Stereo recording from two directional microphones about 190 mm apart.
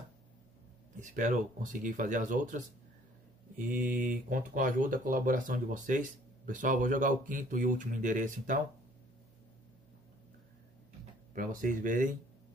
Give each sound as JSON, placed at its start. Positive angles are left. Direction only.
{"t": 1.0, "sound": "speech", "side_deg": -40}
{"t": 11.3, "sound": "speech", "side_deg": -45}